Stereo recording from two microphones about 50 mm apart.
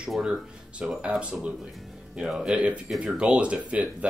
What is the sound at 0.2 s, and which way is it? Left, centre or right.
Speech, right.